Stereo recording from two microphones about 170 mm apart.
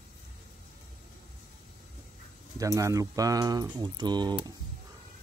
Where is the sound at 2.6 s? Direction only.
20° right (ahead or behind).